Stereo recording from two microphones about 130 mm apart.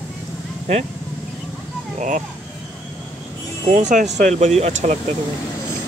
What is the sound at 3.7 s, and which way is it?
Speech, 70° right (ahead or behind).